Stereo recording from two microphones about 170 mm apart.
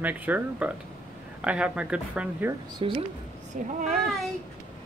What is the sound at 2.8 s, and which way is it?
Speech, 30° right (ahead or behind).